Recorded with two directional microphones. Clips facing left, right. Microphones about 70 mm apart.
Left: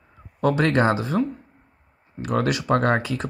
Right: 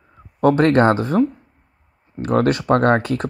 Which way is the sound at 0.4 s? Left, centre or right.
Right.